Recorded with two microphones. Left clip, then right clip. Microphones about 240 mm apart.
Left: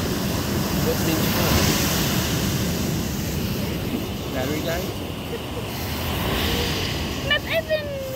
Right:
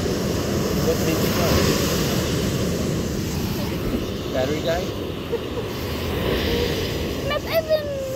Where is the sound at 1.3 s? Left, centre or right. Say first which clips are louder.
Right 1 dB; left.